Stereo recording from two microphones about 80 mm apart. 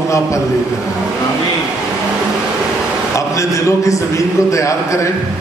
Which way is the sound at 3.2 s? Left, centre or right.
Left.